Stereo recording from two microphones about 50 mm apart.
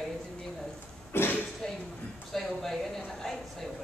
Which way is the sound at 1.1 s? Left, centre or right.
Left.